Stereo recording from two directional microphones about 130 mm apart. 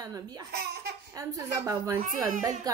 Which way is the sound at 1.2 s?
25° right (ahead or behind).